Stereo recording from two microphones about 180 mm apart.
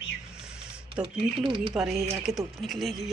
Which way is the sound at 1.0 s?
30° right (ahead or behind).